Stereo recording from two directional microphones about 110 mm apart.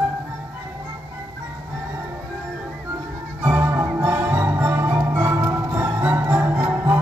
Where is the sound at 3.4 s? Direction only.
20° right (ahead or behind).